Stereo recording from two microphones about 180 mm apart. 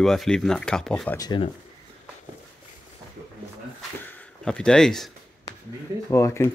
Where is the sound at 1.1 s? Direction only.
20° left (ahead or behind).